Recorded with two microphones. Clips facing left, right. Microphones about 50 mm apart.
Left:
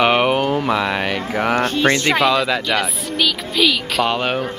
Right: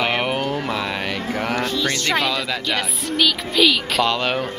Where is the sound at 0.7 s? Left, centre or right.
Left.